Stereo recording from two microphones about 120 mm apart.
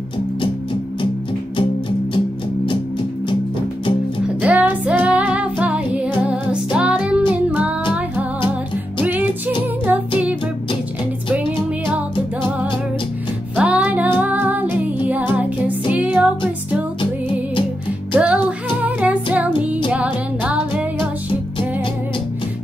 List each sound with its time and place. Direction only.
1.6 s music: 45° left (ahead or behind)
4.4 s music: 10° right (ahead or behind)
9.0 s music: 15° right (ahead or behind)
11.3 s music: 10° right (ahead or behind)
13.6 s music: 10° right (ahead or behind)
18.1 s music: 10° right (ahead or behind)